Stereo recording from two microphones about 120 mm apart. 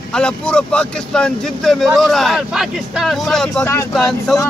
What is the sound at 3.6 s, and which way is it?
Speech, 20° left (ahead or behind).